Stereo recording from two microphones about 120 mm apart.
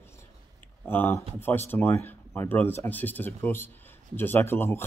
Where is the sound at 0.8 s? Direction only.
20° left (ahead or behind).